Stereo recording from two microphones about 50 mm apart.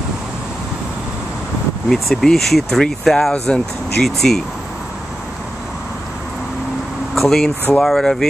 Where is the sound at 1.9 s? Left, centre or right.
Centre.